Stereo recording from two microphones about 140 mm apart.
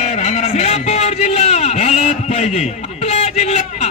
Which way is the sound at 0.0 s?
55° left (ahead or behind).